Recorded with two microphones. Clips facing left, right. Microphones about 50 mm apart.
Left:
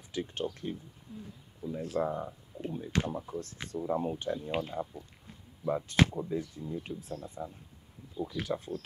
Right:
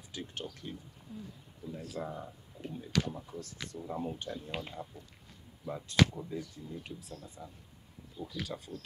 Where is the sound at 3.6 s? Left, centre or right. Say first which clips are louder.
Left 6 dB; left.